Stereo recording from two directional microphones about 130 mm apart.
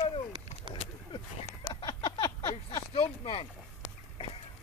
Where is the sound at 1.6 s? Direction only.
30° left (ahead or behind).